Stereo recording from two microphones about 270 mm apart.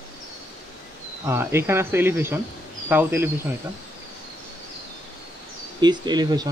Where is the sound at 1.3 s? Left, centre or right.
Centre.